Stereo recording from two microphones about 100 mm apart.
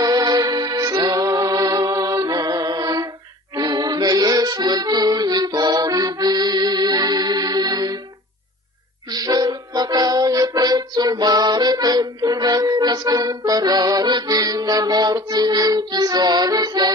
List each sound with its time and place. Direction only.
0.0 s music: 40° right (ahead or behind)
3.5 s accordion: 40° right (ahead or behind)
9.1 s music: 40° right (ahead or behind)